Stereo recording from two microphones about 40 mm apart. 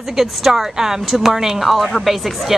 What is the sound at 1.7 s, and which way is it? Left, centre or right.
Speech, centre.